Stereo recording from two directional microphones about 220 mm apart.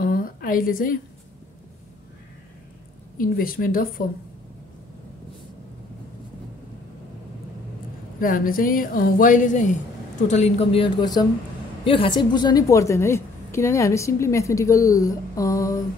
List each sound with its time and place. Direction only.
0.0 s a sound: 40° left (ahead or behind)
3.2 s a woman's voice: 40° left (ahead or behind)
8.2 s a woman's voice: 40° left (ahead or behind); by 15.8 s 15° left (ahead or behind)